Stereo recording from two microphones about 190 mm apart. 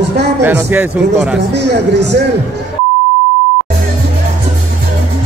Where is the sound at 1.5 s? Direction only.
65° right (ahead or behind).